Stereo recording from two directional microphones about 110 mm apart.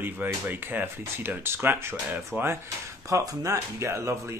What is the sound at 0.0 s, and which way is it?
Speech, 15° right (ahead or behind).